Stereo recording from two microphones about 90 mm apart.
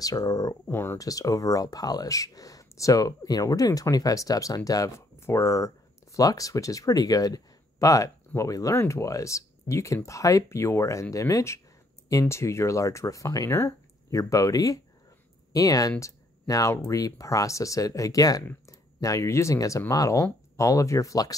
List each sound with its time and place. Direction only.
0.0 s speech: 40° left (ahead or behind)
0.7 s speech: 25° left (ahead or behind)
0.9 s speech: 40° left (ahead or behind)
16.0 s a sound: 35° left (ahead or behind)
16.9 s speech: 40° left (ahead or behind)